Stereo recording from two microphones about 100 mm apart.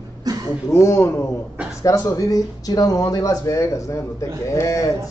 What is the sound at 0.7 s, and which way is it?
Speech, 30° left (ahead or behind).